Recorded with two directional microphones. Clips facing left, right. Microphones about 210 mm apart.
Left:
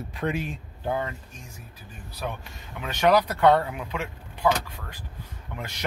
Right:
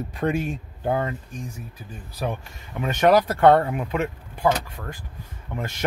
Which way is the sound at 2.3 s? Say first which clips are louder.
Right 5 dB; 45° right (ahead or behind).